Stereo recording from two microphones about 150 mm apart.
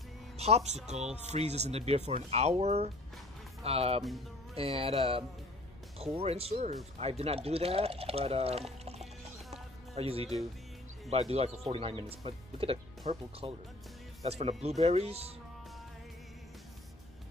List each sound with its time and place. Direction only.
0.4 s a man's voice: 45° right (ahead or behind)
9.5 s music: 40° right (ahead or behind)
11.1 s a man's voice: 45° right (ahead or behind)